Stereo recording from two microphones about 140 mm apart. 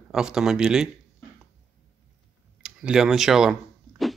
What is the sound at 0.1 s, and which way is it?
Speech, 5° right (ahead or behind).